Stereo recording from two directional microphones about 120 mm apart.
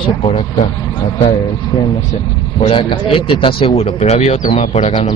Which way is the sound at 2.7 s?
45° left (ahead or behind).